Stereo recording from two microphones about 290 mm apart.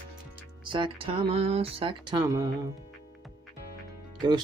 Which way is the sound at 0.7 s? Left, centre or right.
Centre.